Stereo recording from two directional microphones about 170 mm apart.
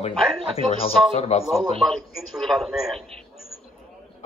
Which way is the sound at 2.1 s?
Centre (ahead or behind).